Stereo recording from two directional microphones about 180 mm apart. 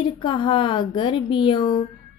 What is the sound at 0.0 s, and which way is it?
A woman's voice, 25° left (ahead or behind).